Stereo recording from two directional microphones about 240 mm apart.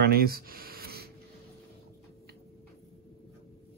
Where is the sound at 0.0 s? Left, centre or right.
Right.